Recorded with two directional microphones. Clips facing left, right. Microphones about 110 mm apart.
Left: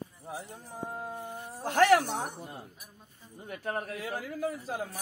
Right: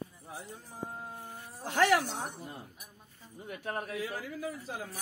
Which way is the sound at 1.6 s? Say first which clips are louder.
Left 4 dB; 50° left (ahead or behind).